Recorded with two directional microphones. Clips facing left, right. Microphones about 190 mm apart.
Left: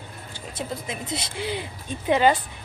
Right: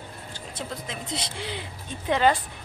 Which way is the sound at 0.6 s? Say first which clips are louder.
Left 4 dB; 5° left (ahead or behind).